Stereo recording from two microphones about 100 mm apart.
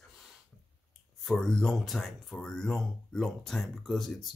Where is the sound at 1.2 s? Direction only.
5° left (ahead or behind).